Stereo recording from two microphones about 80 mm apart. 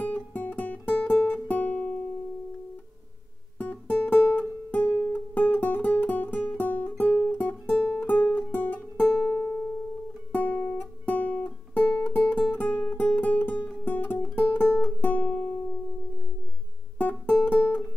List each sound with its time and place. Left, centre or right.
0.0 s music: centre
3.5 s music: left
17.0 s music: centre